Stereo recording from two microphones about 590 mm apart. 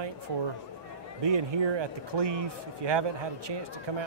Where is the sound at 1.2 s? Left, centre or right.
Right.